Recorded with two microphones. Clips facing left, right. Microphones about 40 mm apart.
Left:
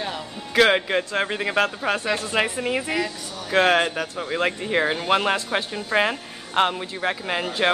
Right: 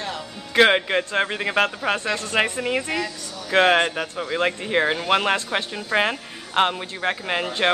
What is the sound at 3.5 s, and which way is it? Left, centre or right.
Speech, centre.